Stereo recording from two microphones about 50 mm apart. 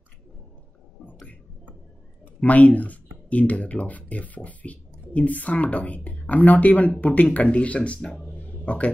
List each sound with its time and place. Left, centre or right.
2.4 s speech: left
8.4 s a sound: left
8.6 s speech: left